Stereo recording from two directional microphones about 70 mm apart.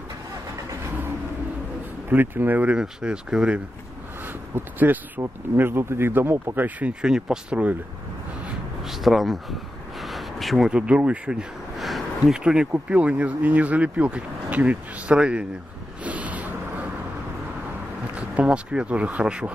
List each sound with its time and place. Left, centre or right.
2.0 s speech: right
2.8 s speech: centre
4.6 s speech: right
7.0 s speech: centre
8.8 s a sound: centre
10.7 s speech: centre
11.8 s a sound: centre
12.7 s speech: centre
16.0 s a sound: right
18.1 s speech: centre